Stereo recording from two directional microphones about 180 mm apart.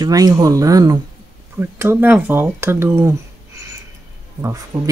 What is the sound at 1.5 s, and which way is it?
Speech, 10° right (ahead or behind).